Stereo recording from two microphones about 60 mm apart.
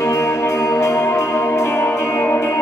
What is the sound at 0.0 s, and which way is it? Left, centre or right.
Music, left.